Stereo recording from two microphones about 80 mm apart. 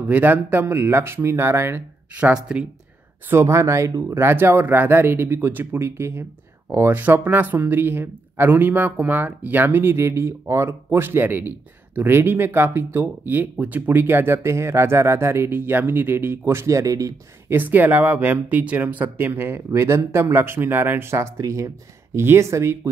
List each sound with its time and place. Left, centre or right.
0.0 s speech: right
2.3 s speech: centre
3.3 s speech: right
17.5 s speech: right